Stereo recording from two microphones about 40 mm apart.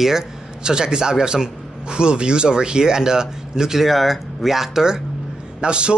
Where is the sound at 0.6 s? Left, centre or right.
Centre.